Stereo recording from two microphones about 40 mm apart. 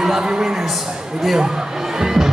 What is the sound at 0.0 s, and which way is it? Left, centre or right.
Speech, centre.